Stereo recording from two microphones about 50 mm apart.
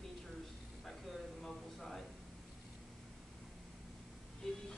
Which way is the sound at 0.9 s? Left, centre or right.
Centre.